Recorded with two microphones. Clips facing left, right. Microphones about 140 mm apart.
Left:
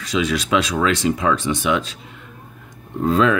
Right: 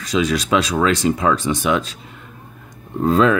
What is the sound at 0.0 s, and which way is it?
Speech, 40° right (ahead or behind).